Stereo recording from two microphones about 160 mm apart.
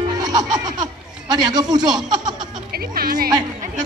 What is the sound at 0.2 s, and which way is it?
Music, 25° right (ahead or behind).